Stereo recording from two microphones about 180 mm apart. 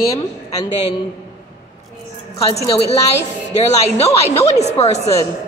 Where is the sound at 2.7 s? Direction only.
35° left (ahead or behind).